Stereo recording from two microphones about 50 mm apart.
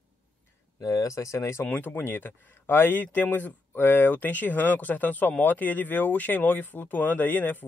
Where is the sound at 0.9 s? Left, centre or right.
Left.